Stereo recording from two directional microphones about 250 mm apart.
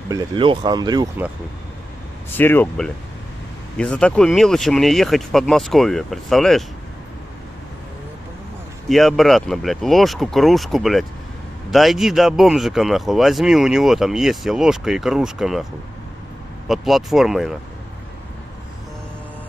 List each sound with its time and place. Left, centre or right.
0.1 s speech: centre
2.3 s speech: centre
8.8 s speech: centre
16.6 s speech: centre